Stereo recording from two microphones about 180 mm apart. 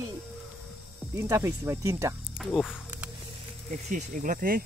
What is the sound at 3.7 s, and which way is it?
Speech, 45° right (ahead or behind).